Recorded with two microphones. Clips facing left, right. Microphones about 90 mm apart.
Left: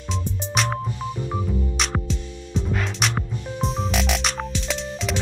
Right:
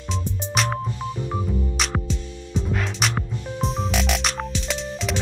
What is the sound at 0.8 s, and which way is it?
Music, 15° left (ahead or behind).